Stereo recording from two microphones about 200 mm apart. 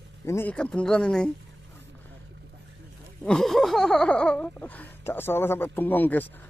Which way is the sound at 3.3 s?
Centre (ahead or behind).